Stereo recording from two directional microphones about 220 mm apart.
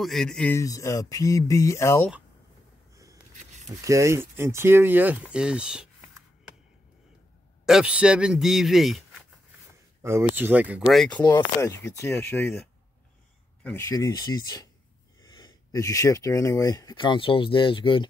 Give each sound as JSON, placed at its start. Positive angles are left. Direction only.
{"t": 0.0, "sound": "speech", "side_deg": 0}
{"t": 3.8, "sound": "speech", "side_deg": -15}
{"t": 7.6, "sound": "a man's voice", "side_deg": -5}
{"t": 10.0, "sound": "speech", "side_deg": -10}
{"t": 11.2, "sound": "speech", "side_deg": 15}
{"t": 13.7, "sound": "speech", "side_deg": 10}